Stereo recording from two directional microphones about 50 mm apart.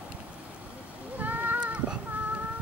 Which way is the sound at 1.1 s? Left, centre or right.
Right.